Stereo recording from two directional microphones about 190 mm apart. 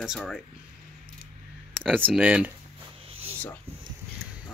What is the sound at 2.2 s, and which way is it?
Speech, 10° right (ahead or behind).